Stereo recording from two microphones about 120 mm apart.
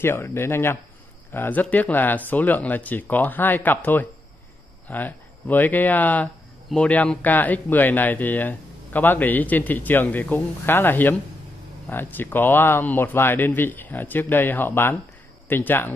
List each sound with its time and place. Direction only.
0.0 s speech: 20° left (ahead or behind)